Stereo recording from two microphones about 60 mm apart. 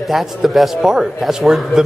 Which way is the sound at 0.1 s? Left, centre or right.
Centre.